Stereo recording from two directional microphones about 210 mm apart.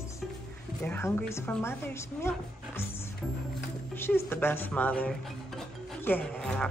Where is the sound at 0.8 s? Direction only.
10° left (ahead or behind).